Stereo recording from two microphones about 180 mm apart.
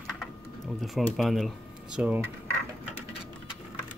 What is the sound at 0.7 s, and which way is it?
Speech, centre (ahead or behind).